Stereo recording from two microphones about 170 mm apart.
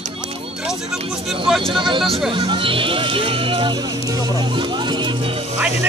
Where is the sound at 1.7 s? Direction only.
30° right (ahead or behind).